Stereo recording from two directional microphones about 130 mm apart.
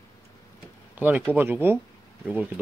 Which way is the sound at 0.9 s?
15° right (ahead or behind).